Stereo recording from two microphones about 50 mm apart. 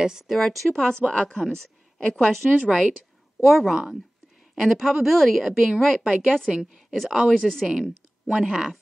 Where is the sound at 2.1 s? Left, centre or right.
Centre.